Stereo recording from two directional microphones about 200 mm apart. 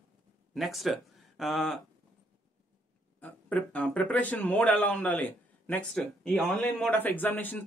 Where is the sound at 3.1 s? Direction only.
10° left (ahead or behind).